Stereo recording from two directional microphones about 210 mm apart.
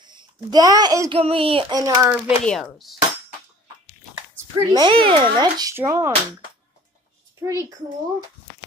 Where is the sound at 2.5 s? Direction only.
5° left (ahead or behind).